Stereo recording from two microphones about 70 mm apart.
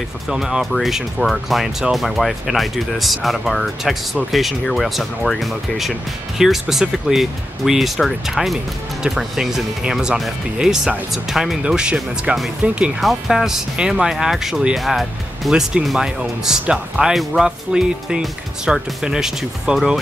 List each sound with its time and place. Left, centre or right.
0.3 s speech: centre
13.0 s speech: centre